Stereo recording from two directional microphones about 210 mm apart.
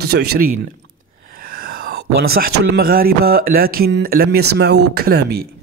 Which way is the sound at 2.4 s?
45° right (ahead or behind).